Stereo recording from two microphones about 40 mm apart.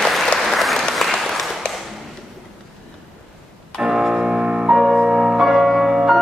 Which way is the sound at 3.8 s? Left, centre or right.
Centre.